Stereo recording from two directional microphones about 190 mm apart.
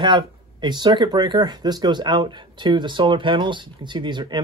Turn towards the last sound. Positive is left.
turn(degrees=-25)  # may be behind; listen again after turning